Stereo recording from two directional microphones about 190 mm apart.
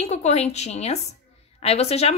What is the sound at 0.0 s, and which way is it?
A woman's voice, 35° left (ahead or behind).